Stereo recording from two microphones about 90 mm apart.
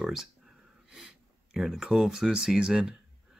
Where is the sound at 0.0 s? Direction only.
5° right (ahead or behind).